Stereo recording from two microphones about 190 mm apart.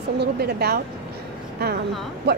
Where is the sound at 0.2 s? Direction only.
60° right (ahead or behind).